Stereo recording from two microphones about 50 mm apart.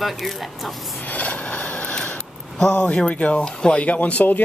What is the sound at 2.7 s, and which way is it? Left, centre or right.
Speech, left.